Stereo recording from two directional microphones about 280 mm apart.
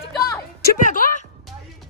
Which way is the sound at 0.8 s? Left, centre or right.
Left.